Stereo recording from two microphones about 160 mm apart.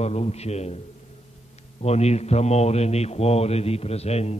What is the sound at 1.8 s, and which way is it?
A man's voice, 40° left (ahead or behind).